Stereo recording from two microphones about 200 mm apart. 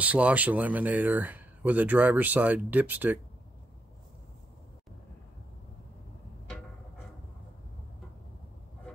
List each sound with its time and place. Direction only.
0.0 s speech: 5° right (ahead or behind)